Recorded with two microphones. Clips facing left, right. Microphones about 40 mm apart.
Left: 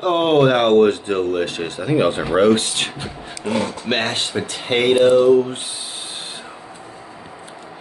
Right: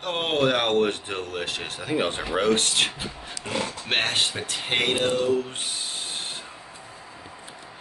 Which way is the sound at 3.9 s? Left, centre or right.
Centre.